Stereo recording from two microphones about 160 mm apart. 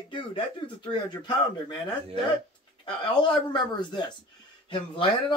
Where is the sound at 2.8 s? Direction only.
30° left (ahead or behind).